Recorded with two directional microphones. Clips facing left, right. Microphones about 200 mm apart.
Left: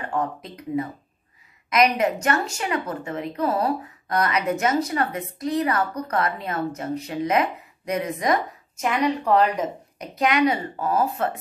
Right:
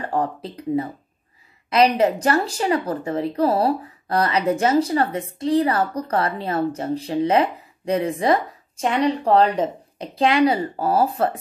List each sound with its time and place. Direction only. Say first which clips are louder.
0.0 s a woman's voice: right 3 dB; 30° right (ahead or behind)